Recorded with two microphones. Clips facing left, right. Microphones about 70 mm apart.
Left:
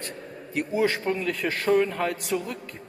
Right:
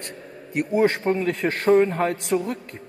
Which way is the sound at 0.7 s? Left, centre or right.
Right.